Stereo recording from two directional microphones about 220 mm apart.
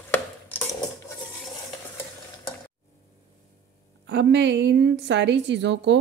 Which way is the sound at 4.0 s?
50° right (ahead or behind).